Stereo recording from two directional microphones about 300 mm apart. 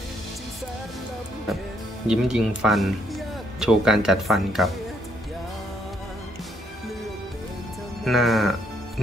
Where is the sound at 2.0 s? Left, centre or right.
Centre.